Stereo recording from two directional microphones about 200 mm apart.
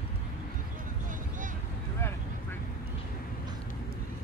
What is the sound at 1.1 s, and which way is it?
Vehicle, 40° right (ahead or behind).